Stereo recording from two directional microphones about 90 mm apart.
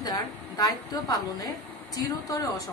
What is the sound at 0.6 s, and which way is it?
Speech, 45° left (ahead or behind).